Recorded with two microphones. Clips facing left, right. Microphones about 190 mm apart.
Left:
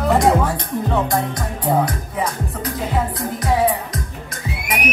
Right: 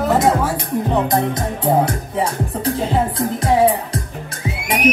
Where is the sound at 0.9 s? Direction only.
25° right (ahead or behind).